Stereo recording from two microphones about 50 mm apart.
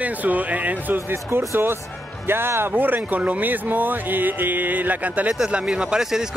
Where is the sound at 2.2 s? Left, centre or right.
Right.